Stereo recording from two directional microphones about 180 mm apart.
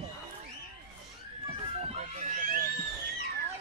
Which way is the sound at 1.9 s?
35° right (ahead or behind).